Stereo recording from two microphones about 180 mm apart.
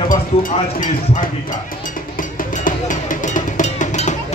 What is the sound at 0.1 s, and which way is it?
Speech, 50° left (ahead or behind).